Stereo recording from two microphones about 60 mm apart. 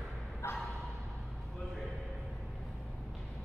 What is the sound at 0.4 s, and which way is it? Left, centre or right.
Bow-wow, left.